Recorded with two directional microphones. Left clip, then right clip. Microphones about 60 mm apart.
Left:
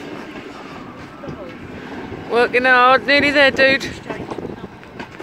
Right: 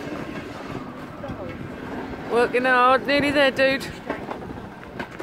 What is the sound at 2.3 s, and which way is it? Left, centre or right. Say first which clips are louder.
Speech: left 5 dB; left.